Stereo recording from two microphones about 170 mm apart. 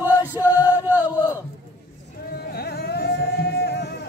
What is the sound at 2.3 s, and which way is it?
Music, 65° left (ahead or behind).